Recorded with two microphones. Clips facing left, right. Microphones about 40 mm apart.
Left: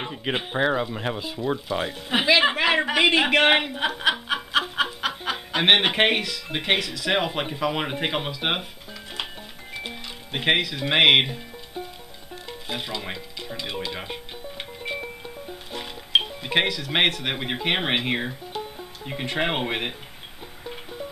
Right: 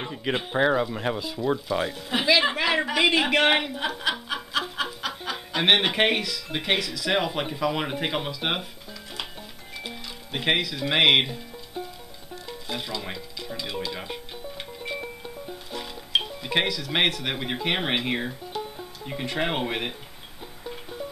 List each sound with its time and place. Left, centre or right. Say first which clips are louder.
0.0 s speech: even; centre
9.8 s speech: left 2 dB; left
12.4 s music: left 1 dB; left
15.0 s music: left 1 dB; centre
15.7 s speech: left 4 dB; left
20.6 s music: even; centre